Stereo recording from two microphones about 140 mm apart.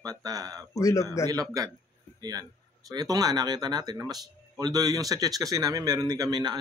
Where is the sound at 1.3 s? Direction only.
25° right (ahead or behind).